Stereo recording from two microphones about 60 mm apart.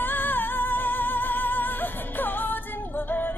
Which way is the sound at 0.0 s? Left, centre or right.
Left.